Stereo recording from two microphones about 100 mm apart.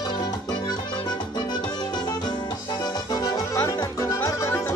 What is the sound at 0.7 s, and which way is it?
Music, 45° left (ahead or behind).